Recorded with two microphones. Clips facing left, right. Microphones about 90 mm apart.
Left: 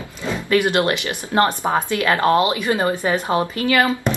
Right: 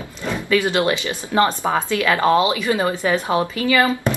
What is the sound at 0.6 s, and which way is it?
Speech, 20° right (ahead or behind).